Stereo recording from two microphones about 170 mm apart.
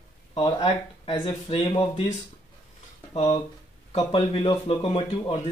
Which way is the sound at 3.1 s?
40° left (ahead or behind).